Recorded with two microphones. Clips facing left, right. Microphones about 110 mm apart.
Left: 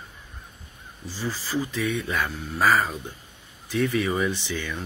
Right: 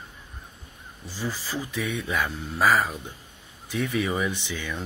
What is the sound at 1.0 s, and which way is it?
Speech, 15° right (ahead or behind).